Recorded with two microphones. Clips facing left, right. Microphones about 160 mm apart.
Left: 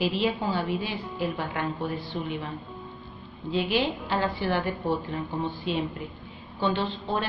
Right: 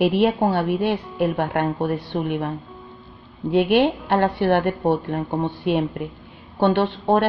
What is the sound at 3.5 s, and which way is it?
A woman's voice, 65° right (ahead or behind).